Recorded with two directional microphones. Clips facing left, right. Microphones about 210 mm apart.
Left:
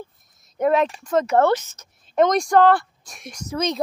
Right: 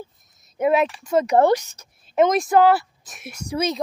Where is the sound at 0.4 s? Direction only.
5° right (ahead or behind).